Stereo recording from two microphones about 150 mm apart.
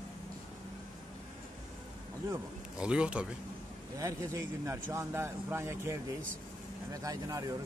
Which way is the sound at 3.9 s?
20° right (ahead or behind).